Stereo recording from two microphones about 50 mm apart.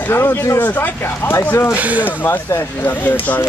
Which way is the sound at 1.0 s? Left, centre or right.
Left.